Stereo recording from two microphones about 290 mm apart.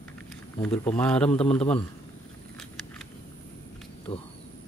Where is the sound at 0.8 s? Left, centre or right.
Centre.